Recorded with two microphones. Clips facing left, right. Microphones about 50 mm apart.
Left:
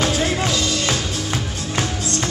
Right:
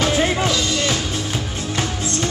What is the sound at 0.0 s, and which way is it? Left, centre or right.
Music, right.